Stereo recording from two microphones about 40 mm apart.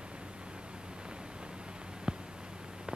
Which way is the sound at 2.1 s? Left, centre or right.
Right.